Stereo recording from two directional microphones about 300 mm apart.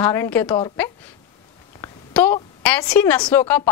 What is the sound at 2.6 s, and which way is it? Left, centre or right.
A woman's voice, centre.